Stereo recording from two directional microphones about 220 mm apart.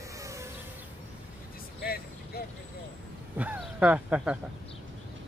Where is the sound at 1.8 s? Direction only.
45° left (ahead or behind).